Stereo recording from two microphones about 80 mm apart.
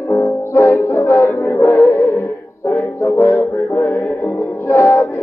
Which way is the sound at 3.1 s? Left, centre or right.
Left.